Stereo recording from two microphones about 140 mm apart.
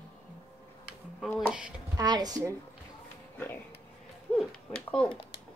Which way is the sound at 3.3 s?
15° left (ahead or behind).